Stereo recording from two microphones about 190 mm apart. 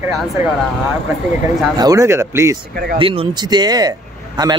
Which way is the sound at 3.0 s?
30° right (ahead or behind).